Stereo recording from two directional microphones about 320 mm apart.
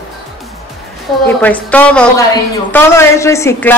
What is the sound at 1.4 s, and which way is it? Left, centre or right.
A man's voice, centre.